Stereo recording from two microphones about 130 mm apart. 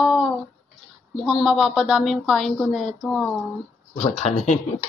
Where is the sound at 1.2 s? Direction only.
5° right (ahead or behind).